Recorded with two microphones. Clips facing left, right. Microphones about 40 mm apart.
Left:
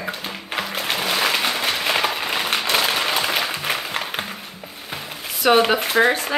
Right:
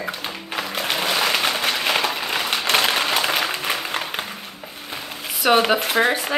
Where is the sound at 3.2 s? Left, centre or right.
Centre.